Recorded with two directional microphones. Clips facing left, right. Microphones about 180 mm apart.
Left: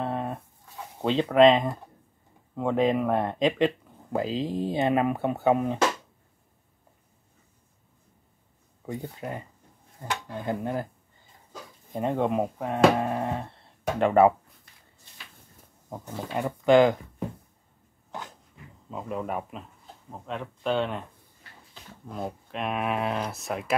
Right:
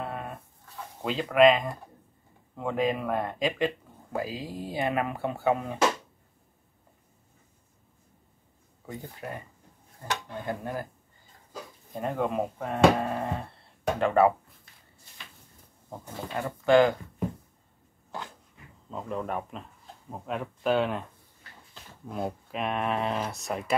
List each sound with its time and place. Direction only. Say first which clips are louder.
0.0 s a sound: left 6 dB; 25° left (ahead or behind)
1.0 s speech: left 2 dB; 25° left (ahead or behind)
8.8 s speech: left 4 dB; 20° left (ahead or behind)
11.9 s speech: left 3 dB; 20° left (ahead or behind)
15.9 s speech: left 3 dB; 15° left (ahead or behind)
18.9 s speech: left 1 dB; 5° left (ahead or behind)
20.2 s speech: right 1 dB; 5° right (ahead or behind)
22.0 s speech: right 2 dB; 5° right (ahead or behind)